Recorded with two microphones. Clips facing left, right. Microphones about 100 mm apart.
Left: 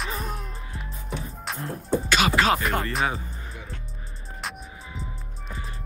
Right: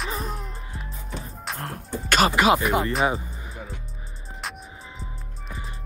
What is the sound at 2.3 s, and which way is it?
Speech, 20° right (ahead or behind).